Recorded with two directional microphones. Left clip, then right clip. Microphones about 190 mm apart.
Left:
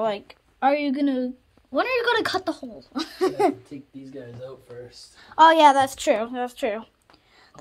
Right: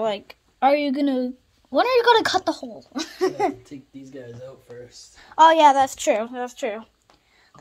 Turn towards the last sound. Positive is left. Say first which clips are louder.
# left 1 dB
turn(degrees=-5)  # may be behind; listen again after turning